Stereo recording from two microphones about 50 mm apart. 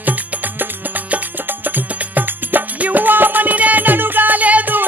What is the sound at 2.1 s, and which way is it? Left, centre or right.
Music, right.